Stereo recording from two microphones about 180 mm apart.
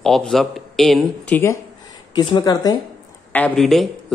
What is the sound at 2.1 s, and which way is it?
Speech, 20° left (ahead or behind).